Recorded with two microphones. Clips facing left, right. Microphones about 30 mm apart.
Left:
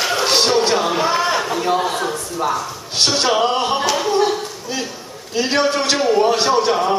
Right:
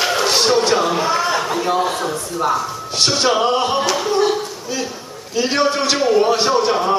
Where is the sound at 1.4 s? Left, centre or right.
Centre.